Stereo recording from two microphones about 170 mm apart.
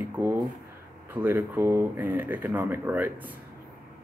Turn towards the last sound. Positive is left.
turn(degrees=-10)  # may be behind; listen again after turning